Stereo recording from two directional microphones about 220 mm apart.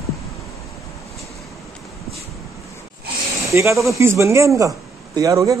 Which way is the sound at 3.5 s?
15° right (ahead or behind).